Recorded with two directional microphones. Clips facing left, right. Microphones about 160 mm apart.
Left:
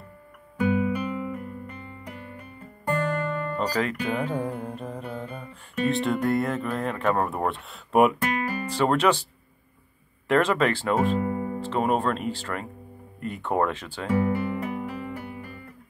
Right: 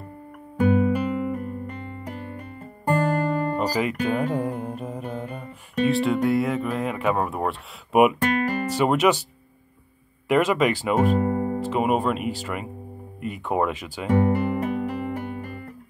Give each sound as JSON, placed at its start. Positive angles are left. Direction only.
{"t": 0.6, "sound": "music", "side_deg": -40}
{"t": 3.5, "sound": "speech", "side_deg": -10}
{"t": 10.2, "sound": "speech", "side_deg": -10}
{"t": 11.1, "sound": "music", "side_deg": -40}
{"t": 11.6, "sound": "speech", "side_deg": -10}
{"t": 14.2, "sound": "music", "side_deg": -45}